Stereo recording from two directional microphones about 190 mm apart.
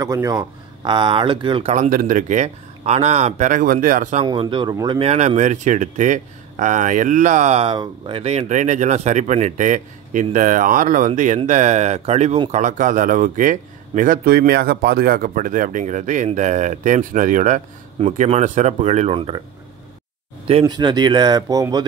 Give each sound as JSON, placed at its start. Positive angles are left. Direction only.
{"t": 0.0, "sound": "speech", "side_deg": -15}
{"t": 1.9, "sound": "speech", "side_deg": -45}
{"t": 4.2, "sound": "speech", "side_deg": -25}
{"t": 20.4, "sound": "speech", "side_deg": -25}